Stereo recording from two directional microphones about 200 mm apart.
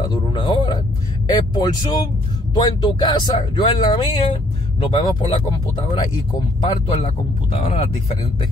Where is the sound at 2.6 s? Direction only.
20° left (ahead or behind).